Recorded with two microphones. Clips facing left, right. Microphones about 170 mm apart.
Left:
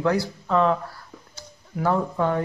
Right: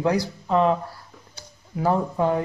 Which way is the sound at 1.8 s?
20° right (ahead or behind).